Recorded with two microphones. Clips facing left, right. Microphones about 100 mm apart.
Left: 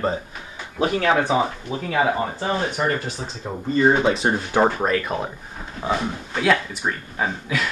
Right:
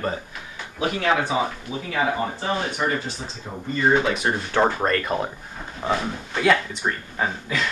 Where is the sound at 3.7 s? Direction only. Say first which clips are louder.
Left 3 dB; 30° left (ahead or behind).